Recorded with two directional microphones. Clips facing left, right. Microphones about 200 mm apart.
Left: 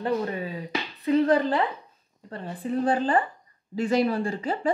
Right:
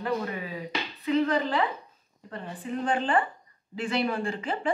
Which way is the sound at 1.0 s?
40° left (ahead or behind).